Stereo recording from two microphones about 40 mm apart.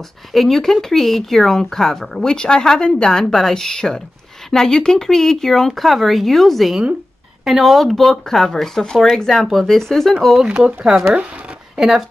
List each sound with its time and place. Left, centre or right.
0.3 s speech: centre
2.3 s speech: left
5.7 s speech: centre
10.1 s speech: centre
10.4 s speech: centre